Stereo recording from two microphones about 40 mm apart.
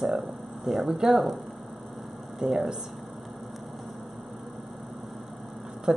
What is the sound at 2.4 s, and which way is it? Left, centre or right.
Speech, centre.